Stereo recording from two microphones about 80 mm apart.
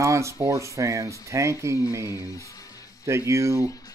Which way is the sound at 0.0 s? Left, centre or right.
Right.